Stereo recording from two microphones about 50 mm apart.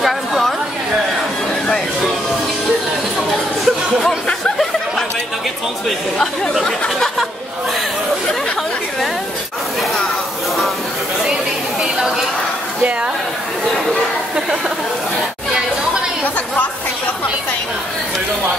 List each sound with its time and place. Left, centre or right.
0.0 s chatter: centre
3.6 s music: centre